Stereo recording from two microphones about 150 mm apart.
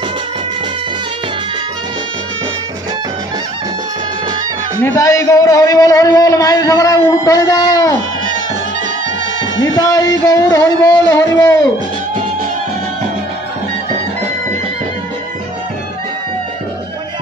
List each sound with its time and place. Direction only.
4.8 s a man's voice: 20° left (ahead or behind)
9.8 s a man's voice: 25° left (ahead or behind)